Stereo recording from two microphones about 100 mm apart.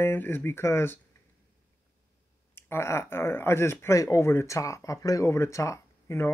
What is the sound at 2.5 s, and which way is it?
Speech, 25° left (ahead or behind).